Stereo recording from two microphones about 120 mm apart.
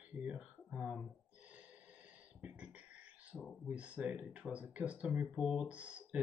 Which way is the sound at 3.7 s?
10° right (ahead or behind).